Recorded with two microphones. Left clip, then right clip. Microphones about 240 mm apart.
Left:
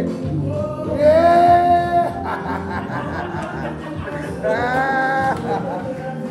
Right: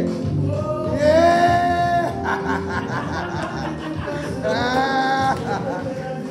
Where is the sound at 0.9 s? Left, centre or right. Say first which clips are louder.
Left 3 dB; right.